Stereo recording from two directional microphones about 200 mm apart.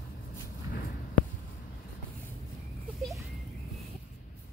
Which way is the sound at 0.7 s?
50° left (ahead or behind).